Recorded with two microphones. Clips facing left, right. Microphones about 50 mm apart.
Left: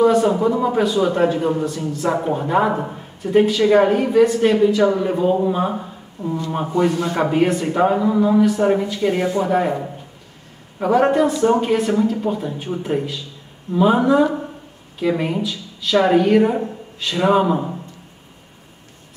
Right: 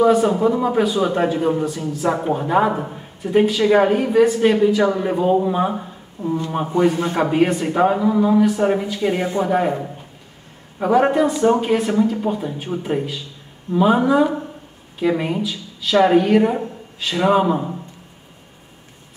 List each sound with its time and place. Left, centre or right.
0.0 s speech: centre
5.7 s a sound: centre
6.7 s a man's voice: right
7.2 s speech: centre